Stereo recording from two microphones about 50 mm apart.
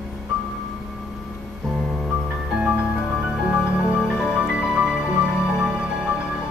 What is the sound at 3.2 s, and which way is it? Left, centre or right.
Music, centre.